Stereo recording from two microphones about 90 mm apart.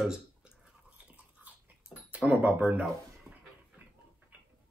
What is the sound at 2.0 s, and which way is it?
Speech, 15° right (ahead or behind).